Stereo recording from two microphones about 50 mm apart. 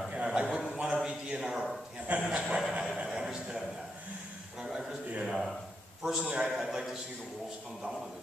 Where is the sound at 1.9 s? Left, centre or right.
Right.